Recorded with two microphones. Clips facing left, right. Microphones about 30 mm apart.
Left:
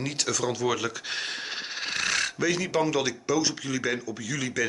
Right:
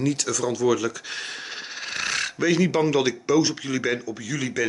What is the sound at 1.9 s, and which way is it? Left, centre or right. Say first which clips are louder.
Speech: right 1 dB; centre.